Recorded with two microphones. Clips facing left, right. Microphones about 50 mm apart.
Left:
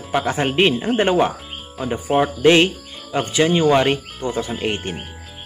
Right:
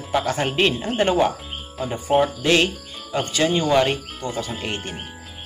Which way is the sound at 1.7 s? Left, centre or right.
Centre.